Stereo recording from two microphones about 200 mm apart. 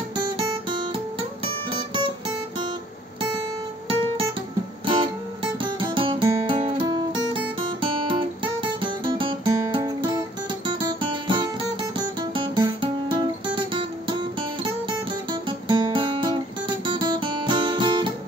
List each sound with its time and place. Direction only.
0.4 s guitar: 25° right (ahead or behind)
1.4 s music: 25° right (ahead or behind)
4.8 s music: 25° right (ahead or behind)
6.2 s guitar: 25° right (ahead or behind)
8.8 s music: 25° right (ahead or behind)
10.7 s guitar: 25° right (ahead or behind)
12.2 s music: 25° right (ahead or behind)
15.7 s guitar: 25° right (ahead or behind)